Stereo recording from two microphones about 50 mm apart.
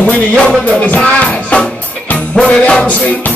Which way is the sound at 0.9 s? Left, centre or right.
Left.